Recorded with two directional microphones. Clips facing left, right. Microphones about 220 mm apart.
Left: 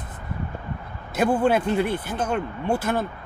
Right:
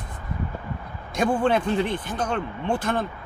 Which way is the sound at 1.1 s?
5° left (ahead or behind).